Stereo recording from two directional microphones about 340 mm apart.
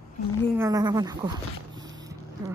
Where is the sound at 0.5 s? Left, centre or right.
Centre.